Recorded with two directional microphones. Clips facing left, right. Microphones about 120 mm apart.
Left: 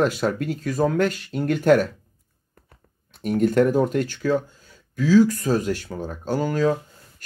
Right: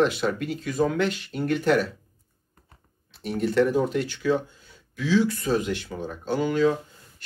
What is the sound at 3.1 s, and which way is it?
Speech, 50° left (ahead or behind).